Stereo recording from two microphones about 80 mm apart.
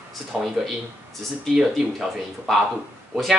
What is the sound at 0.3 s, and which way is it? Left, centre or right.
Speech, centre.